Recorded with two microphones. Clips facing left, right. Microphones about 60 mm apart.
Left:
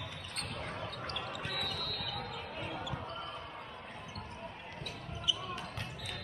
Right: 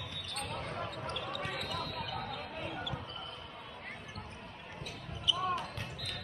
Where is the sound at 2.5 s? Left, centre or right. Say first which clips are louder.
Left 1 dB; centre.